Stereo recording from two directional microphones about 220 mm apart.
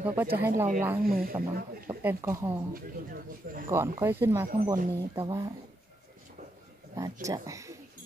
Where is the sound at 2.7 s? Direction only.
40° right (ahead or behind).